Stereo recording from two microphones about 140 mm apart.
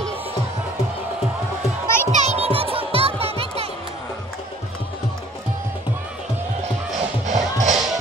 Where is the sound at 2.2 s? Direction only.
50° right (ahead or behind).